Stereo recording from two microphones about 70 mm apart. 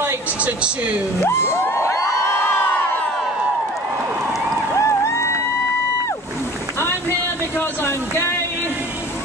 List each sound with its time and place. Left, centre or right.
0.4 s speech: centre
1.2 s crowd: left
4.7 s a sound: left
7.5 s speech: left